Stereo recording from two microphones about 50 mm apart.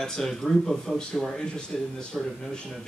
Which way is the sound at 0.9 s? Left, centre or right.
Centre.